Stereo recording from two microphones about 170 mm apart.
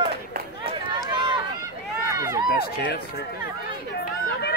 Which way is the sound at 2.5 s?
70° left (ahead or behind).